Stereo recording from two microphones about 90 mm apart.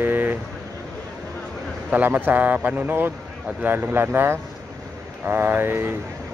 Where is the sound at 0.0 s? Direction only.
20° right (ahead or behind).